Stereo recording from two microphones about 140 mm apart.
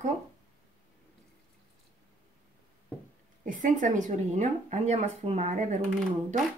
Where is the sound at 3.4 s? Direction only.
65° right (ahead or behind).